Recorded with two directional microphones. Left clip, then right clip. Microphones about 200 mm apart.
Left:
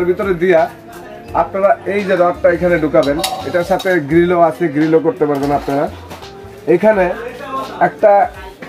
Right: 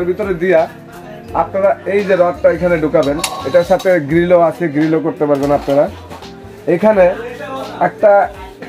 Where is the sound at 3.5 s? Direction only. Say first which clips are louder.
Right 5 dB; 30° right (ahead or behind).